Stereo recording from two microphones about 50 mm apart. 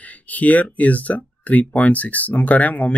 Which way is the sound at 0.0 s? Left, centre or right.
Left.